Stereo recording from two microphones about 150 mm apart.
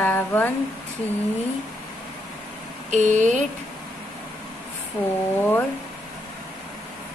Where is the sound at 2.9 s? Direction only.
55° right (ahead or behind).